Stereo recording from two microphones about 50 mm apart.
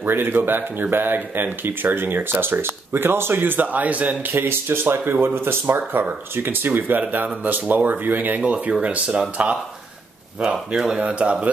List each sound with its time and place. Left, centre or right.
0.0 s speech: right
4.3 s speech: right
8.4 s speech: right
10.4 s speech: centre